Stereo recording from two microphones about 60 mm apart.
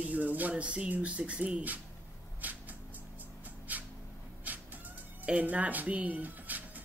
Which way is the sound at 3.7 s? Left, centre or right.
Right.